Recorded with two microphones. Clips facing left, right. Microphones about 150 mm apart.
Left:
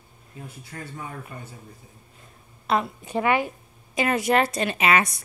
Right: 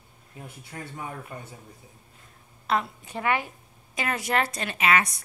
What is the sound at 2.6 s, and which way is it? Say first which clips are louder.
A woman's voice: left 3 dB; 15° left (ahead or behind).